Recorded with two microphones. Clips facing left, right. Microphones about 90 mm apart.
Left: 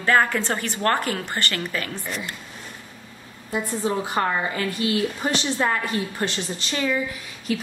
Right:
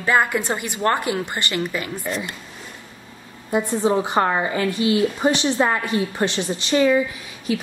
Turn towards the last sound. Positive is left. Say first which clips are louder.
# right 2 dB
turn(degrees=-15)  # may be behind; listen again after turning